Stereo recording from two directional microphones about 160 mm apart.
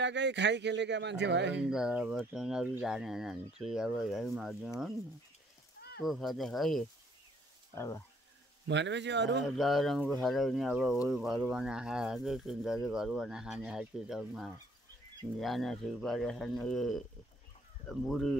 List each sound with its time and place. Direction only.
0.0 s a man's voice: 90° right
1.6 s speech: 5° right (ahead or behind)
5.8 s a sound: 80° left
6.0 s speech: centre (ahead or behind)
7.7 s speech: 20° left (ahead or behind)
8.6 s a man's voice: 90° right
9.6 s speech: centre (ahead or behind)